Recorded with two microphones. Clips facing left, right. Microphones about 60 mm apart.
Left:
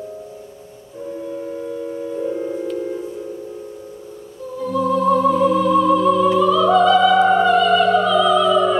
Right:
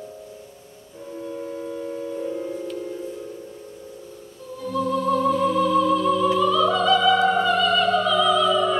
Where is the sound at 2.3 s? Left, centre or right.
Left.